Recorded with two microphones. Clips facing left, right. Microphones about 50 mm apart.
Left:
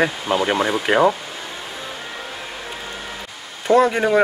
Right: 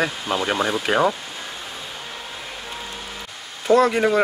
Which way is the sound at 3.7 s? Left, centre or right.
Centre.